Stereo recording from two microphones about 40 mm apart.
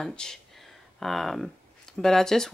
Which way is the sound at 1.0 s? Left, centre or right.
Centre.